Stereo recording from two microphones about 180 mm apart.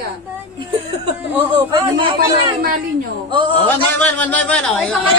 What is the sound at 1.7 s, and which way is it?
Speech, 25° right (ahead or behind).